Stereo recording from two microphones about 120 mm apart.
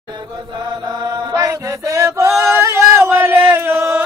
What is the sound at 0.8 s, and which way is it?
Chant, 30° right (ahead or behind).